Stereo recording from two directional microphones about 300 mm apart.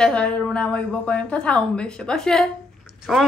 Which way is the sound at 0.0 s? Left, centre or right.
Centre.